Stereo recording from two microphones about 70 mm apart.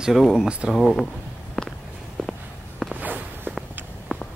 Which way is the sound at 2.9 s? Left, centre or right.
Right.